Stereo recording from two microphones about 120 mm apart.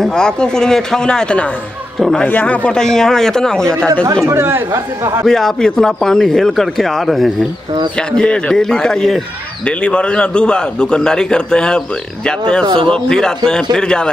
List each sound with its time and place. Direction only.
0.0 s speech: 5° left (ahead or behind)
4.3 s speech: 20° right (ahead or behind)
5.2 s a man's voice: 5° left (ahead or behind)
12.6 s a man's voice: 45° right (ahead or behind)
12.9 s a man's voice: 5° left (ahead or behind)